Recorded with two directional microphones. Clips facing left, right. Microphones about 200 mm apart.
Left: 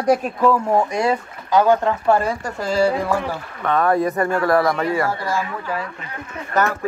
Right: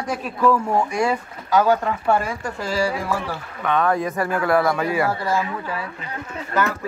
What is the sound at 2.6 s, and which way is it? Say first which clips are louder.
Speech: left 5 dB; 10° right (ahead or behind).